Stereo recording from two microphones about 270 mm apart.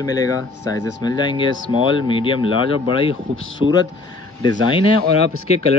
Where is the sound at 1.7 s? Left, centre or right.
Centre.